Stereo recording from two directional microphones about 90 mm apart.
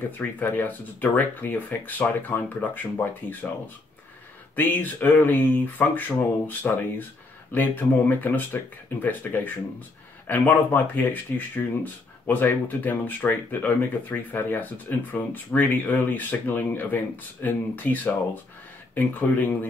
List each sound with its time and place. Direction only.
0.2 s speech: 20° left (ahead or behind)